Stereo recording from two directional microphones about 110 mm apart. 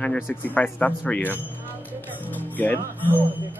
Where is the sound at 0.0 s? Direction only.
15° left (ahead or behind).